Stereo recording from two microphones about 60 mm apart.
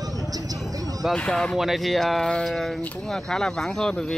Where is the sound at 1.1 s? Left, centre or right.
Centre.